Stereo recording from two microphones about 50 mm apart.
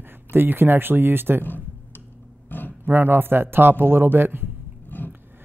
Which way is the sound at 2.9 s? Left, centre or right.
Right.